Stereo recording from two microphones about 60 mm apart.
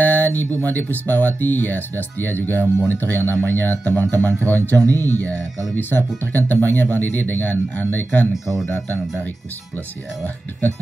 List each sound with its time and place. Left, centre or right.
0.0 s speech: left
4.7 s speech: right
5.8 s speech: left